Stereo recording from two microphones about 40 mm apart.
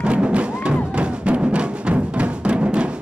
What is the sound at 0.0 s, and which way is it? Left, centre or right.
Music, right.